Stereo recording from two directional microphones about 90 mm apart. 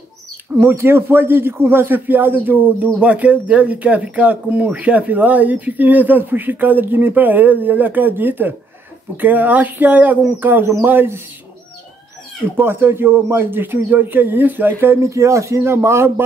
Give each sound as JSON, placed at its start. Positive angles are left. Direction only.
{"t": 0.6, "sound": "a man's voice", "side_deg": -25}
{"t": 12.5, "sound": "a man's voice", "side_deg": -25}